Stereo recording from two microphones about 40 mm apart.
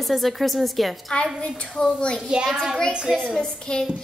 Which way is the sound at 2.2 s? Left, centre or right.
Right.